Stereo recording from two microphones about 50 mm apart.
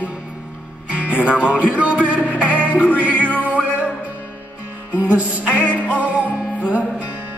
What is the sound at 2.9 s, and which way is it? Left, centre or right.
Music, left.